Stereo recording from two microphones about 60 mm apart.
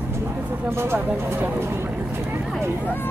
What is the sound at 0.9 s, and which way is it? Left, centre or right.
Speech, right.